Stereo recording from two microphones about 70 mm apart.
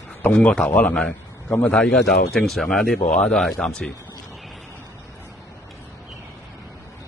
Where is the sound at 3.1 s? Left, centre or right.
Centre.